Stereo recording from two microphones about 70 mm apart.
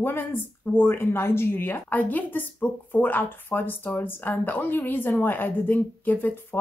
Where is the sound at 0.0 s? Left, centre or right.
Left.